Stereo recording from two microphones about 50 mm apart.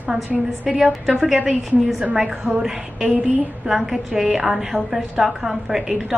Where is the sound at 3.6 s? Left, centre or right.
Centre.